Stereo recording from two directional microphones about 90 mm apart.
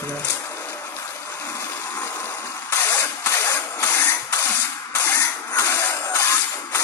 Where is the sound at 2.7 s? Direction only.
35° left (ahead or behind).